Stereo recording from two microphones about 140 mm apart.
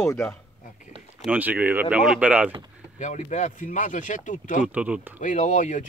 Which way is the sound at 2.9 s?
60° left (ahead or behind).